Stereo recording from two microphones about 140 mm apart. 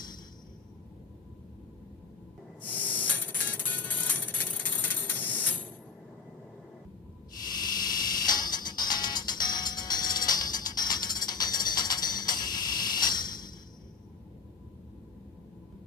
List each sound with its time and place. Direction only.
2.6 s music: 10° left (ahead or behind)
7.5 s a sound: 30° left (ahead or behind)
8.3 s music: 30° left (ahead or behind)